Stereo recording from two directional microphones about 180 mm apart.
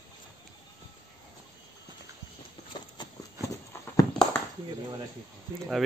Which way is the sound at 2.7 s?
25° left (ahead or behind).